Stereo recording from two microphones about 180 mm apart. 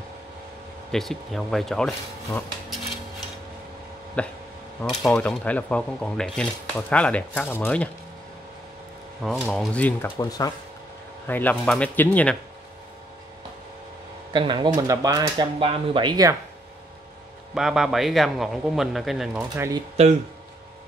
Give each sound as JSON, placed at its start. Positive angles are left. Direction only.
{"t": 0.9, "sound": "speech", "side_deg": 0}
{"t": 4.2, "sound": "speech", "side_deg": 5}
{"t": 9.2, "sound": "speech", "side_deg": 0}
{"t": 10.1, "sound": "speech", "side_deg": 20}
{"t": 11.2, "sound": "speech", "side_deg": 10}
{"t": 14.3, "sound": "speech", "side_deg": -25}
{"t": 17.6, "sound": "speech", "side_deg": -5}
{"t": 19.5, "sound": "speech", "side_deg": -20}